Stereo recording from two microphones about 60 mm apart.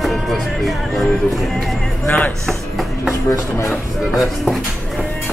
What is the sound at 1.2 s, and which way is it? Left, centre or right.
Speech, centre.